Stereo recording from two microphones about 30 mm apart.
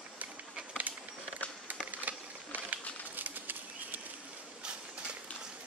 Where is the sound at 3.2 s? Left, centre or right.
Right.